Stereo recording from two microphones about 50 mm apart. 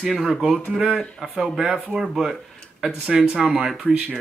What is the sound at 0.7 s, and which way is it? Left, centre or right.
Speech, centre.